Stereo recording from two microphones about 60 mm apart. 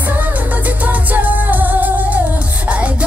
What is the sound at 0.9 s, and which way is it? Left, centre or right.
Music, right.